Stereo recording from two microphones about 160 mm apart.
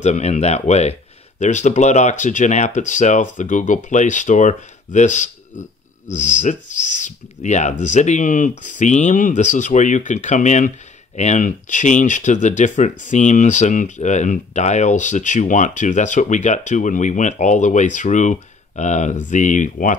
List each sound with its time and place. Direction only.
0.0 s speech: 45° left (ahead or behind)